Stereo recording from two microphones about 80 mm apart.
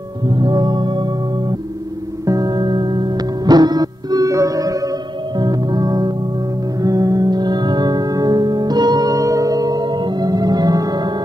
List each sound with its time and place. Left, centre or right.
0.3 s music: right
2.2 s music: right